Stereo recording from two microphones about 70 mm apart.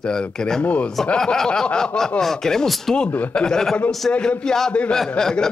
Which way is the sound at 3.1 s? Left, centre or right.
Left.